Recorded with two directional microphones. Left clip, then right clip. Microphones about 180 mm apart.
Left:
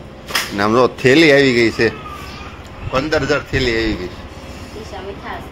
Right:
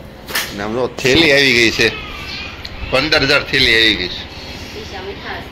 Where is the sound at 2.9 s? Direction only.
5° left (ahead or behind).